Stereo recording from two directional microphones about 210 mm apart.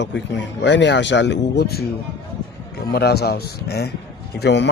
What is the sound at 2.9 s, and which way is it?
Speech, 50° left (ahead or behind).